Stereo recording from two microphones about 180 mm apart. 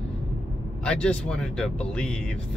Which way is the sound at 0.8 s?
5° left (ahead or behind).